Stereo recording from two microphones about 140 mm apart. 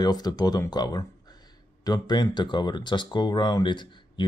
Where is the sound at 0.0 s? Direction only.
30° left (ahead or behind).